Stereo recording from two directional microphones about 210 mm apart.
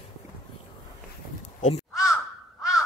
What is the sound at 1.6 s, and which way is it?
Crow, 30° left (ahead or behind).